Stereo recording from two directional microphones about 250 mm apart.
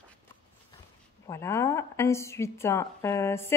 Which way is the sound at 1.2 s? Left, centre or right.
Centre.